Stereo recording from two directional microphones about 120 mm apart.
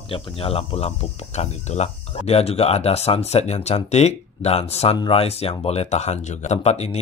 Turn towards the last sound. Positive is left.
turn(degrees=65)  # may be behind; listen again after turning